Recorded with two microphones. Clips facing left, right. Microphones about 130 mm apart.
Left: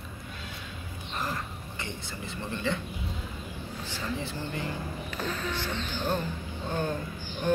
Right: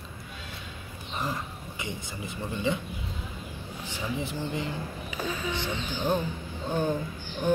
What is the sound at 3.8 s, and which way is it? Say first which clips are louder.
Speech: right 2 dB; 15° right (ahead or behind).